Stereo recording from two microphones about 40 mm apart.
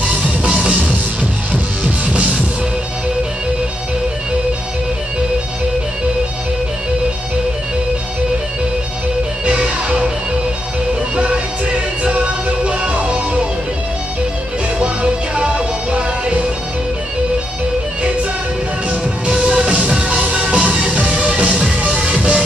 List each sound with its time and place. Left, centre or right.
0.5 s music: right
9.5 s music: right
11.1 s music: right
14.8 s music: right
18.9 s music: right